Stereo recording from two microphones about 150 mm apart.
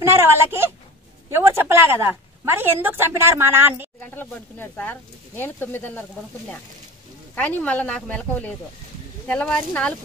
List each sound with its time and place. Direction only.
0.0 s a sound: 15° right (ahead or behind)
1.3 s a woman's voice: 15° right (ahead or behind)
4.0 s speech: 15° left (ahead or behind)
7.3 s speech: 10° left (ahead or behind)